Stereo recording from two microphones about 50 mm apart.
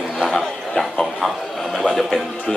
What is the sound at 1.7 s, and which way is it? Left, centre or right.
Music, centre.